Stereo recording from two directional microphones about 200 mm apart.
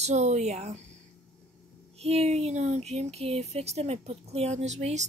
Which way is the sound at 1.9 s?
30° right (ahead or behind).